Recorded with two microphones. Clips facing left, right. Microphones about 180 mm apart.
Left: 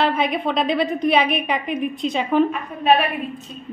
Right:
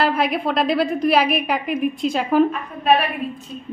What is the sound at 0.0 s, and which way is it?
A woman's voice, 5° right (ahead or behind).